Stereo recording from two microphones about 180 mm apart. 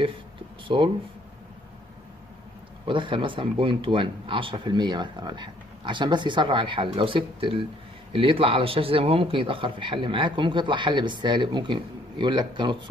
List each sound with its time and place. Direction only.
0.7 s speech: 30° right (ahead or behind)
2.8 s speech: 25° right (ahead or behind)